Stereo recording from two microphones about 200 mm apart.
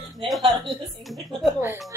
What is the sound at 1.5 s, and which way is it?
Speech, 10° right (ahead or behind).